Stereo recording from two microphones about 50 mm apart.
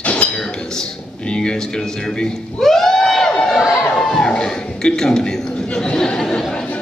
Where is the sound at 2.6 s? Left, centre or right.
Centre.